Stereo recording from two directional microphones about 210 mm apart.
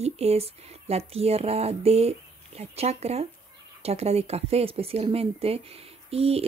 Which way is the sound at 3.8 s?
30° right (ahead or behind).